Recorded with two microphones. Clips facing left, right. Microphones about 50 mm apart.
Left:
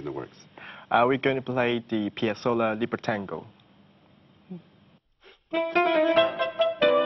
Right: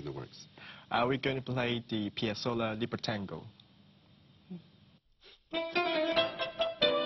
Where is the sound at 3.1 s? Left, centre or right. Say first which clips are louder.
Left 8 dB; left.